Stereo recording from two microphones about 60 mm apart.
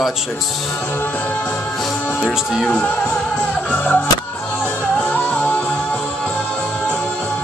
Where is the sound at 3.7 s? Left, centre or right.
Left.